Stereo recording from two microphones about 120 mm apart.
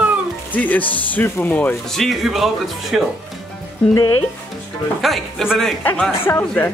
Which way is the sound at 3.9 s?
30° left (ahead or behind).